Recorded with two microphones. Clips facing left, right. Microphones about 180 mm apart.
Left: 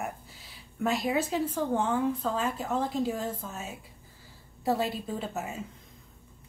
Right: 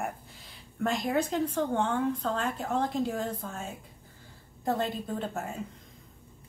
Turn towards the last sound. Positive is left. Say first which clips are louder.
# even
turn(degrees=5)  # may be behind; listen again after turning